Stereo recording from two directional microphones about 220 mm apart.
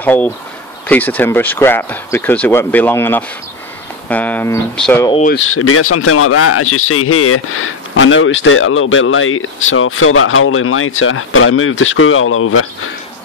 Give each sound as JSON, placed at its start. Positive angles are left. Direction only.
{"t": 0.0, "sound": "speech", "side_deg": 10}
{"t": 5.4, "sound": "speech", "side_deg": 75}